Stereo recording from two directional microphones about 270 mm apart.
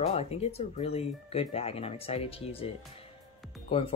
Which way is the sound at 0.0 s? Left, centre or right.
Left.